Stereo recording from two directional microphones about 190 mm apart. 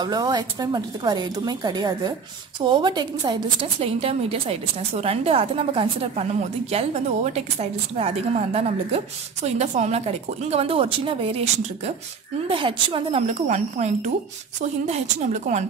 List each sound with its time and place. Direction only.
0.0 s a woman's voice: 20° right (ahead or behind)
13.3 s a woman's voice: 40° right (ahead or behind)